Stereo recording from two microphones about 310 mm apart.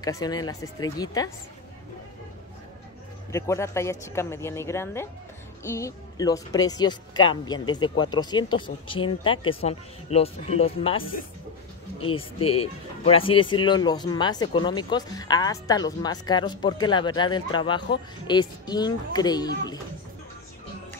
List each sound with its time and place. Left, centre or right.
0.0 s speech: centre
3.3 s speech: centre